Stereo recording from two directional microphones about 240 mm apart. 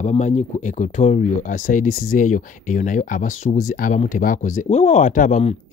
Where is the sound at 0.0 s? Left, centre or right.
Left.